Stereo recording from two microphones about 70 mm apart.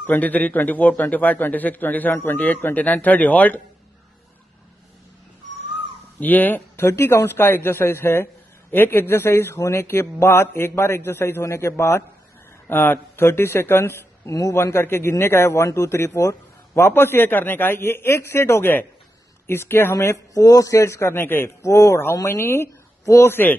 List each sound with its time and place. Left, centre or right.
0.0 s a man's voice: left
6.1 s a man's voice: left
6.8 s speech: left
20.3 s a man's voice: left
21.6 s a man's voice: left